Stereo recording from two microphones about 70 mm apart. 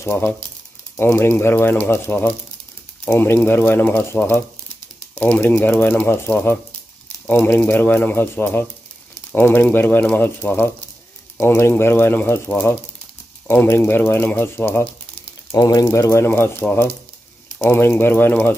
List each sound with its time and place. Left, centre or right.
0.0 s speech: left
15.5 s speech: left
15.8 s speech: left